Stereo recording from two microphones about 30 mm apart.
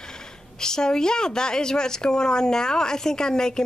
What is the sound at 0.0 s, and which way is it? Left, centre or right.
A woman's voice, left.